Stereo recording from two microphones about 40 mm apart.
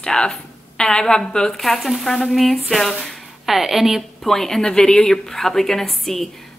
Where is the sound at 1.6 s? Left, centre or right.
Centre.